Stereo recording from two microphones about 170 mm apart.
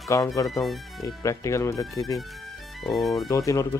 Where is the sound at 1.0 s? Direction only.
20° left (ahead or behind).